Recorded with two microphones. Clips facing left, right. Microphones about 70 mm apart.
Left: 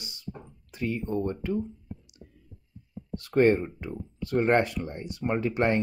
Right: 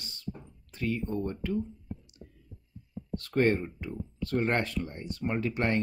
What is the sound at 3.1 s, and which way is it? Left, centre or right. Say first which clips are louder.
Speech: left 5 dB; centre.